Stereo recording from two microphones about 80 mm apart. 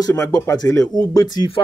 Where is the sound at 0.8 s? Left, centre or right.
Left.